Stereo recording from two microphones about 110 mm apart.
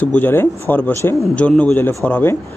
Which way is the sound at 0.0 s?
15° left (ahead or behind).